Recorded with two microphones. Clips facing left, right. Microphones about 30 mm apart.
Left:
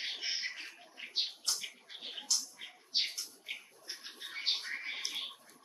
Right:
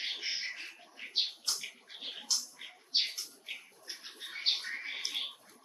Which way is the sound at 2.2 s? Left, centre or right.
Centre.